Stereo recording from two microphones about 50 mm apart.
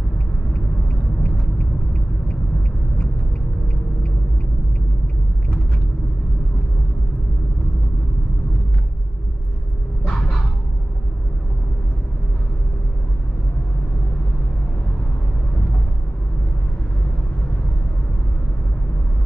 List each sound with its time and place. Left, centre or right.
1.2 s rumble: centre